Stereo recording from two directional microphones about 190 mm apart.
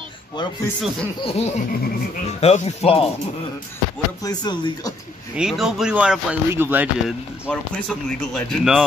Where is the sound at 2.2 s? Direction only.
35° left (ahead or behind).